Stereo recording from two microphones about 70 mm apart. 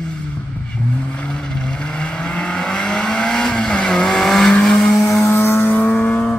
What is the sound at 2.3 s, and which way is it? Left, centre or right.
Vehicle, centre.